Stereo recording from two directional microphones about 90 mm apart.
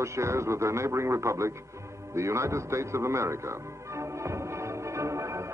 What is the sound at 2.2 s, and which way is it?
Music, 35° right (ahead or behind).